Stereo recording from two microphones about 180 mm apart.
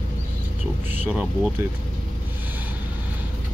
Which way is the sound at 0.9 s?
10° right (ahead or behind).